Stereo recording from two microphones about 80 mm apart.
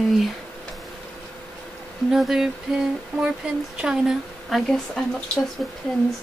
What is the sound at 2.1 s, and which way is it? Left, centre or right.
Speech, centre.